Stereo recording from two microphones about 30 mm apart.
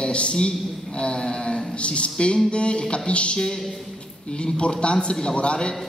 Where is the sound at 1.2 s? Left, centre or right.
Left.